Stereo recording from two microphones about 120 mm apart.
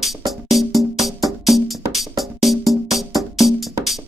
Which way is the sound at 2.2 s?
Centre (ahead or behind).